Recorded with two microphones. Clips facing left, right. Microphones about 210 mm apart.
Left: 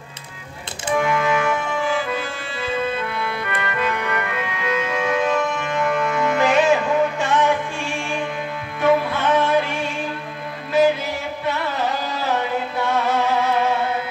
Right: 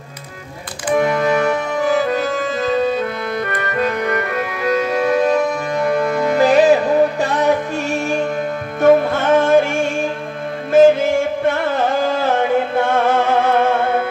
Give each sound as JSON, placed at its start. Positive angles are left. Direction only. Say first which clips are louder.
{"t": 0.8, "sound": "music", "louder": "right 4 dB", "side_deg": -40}